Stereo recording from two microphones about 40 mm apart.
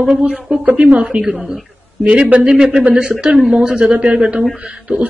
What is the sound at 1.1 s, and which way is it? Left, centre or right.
Speech, right.